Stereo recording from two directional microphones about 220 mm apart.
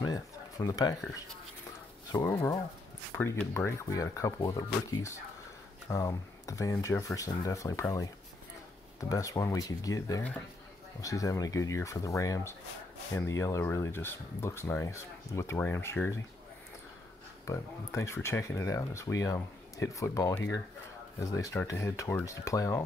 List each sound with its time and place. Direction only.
0.0 s speech: 15° left (ahead or behind)
9.1 s speech: 15° left (ahead or behind)
17.5 s speech: 15° left (ahead or behind)